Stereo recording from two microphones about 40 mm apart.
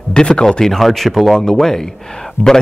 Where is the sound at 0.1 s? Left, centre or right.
Left.